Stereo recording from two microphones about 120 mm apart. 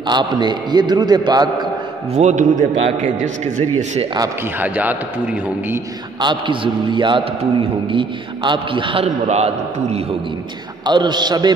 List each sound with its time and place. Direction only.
0.1 s a man's voice: 40° right (ahead or behind)
2.1 s a man's voice: 85° right
4.6 s a man's voice: 15° right (ahead or behind)
6.2 s a man's voice: 45° right (ahead or behind)
10.9 s a man's voice: 40° right (ahead or behind)